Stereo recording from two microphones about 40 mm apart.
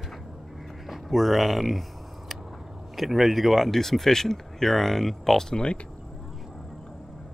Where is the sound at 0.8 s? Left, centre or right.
Centre.